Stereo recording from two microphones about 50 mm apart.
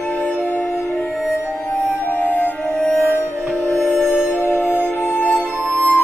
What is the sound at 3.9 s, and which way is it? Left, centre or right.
Music, left.